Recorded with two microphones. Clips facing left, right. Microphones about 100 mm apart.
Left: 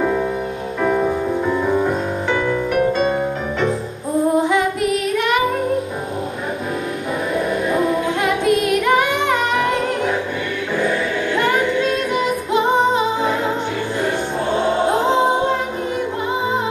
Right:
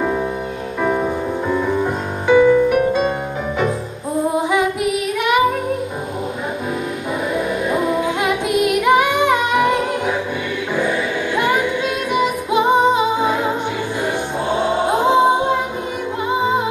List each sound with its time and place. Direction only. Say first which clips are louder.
0.8 s music: left 1 dB; 5° right (ahead or behind)
5.1 s music: right 3 dB; 10° right (ahead or behind)
7.7 s music: right 1 dB; 10° right (ahead or behind)
11.3 s music: even; 10° right (ahead or behind)
14.0 s choir: even; 5° right (ahead or behind)